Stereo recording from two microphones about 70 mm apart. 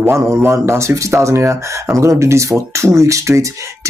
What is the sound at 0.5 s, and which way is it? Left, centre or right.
Speech, right.